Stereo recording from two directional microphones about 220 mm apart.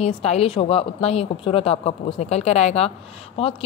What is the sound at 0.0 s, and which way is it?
Speech, 30° left (ahead or behind).